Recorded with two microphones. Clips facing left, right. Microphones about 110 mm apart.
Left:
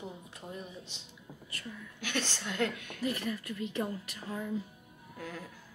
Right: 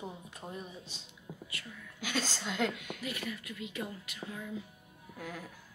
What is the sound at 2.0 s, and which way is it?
A woman's voice, 10° right (ahead or behind).